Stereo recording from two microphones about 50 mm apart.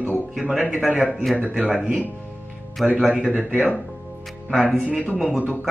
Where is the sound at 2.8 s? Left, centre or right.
Centre.